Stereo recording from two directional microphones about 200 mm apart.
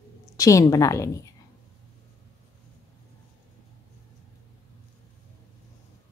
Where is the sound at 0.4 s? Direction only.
15° left (ahead or behind).